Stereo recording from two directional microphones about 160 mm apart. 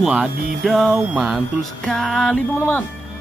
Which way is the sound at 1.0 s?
10° right (ahead or behind).